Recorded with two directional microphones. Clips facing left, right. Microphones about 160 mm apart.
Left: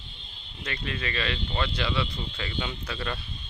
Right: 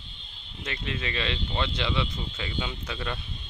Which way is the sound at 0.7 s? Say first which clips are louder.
Even; 20° right (ahead or behind).